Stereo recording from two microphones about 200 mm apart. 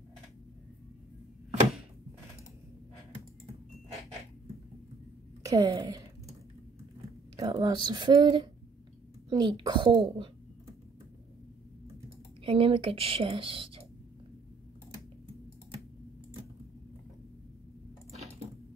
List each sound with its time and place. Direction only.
5.4 s a woman's voice: 15° right (ahead or behind)
7.3 s speech: 15° right (ahead or behind)
12.4 s speech: 25° right (ahead or behind)